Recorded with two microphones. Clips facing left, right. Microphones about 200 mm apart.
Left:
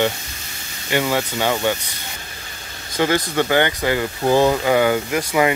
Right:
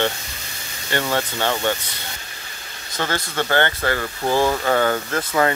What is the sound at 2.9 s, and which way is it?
Speech, 15° left (ahead or behind).